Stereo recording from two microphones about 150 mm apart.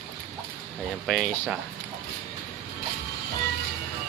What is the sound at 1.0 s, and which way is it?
Speech, centre (ahead or behind).